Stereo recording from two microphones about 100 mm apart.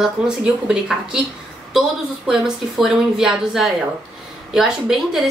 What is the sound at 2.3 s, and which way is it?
Speech, 5° right (ahead or behind).